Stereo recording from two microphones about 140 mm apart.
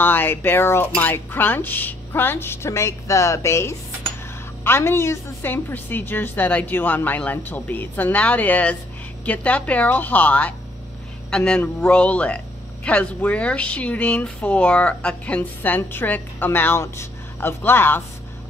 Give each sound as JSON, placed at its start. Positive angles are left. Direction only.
{"t": 0.0, "sound": "speech", "side_deg": 15}